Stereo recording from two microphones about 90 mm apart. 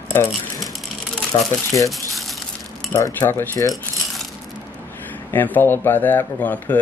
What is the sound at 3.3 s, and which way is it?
Speech, 25° left (ahead or behind).